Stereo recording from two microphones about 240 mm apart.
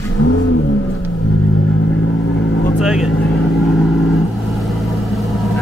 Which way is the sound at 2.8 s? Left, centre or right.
Centre.